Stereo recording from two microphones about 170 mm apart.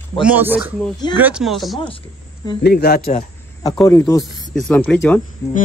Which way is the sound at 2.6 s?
70° left (ahead or behind).